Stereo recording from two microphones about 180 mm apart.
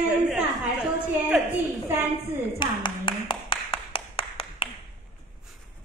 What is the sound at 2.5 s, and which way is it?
Clapping, 25° left (ahead or behind).